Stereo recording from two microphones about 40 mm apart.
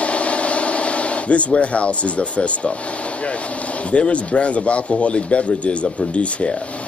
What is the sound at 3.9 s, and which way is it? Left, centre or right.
Speech, left.